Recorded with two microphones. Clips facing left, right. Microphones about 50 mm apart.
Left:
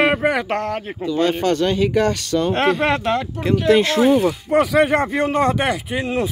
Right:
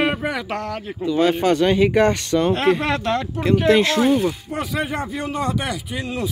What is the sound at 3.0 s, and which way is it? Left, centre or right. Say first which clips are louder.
Speech: left 1 dB; centre.